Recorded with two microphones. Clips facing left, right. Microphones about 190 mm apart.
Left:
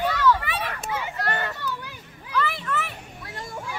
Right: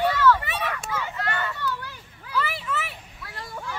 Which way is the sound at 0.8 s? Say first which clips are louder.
Left 1 dB; 15° left (ahead or behind).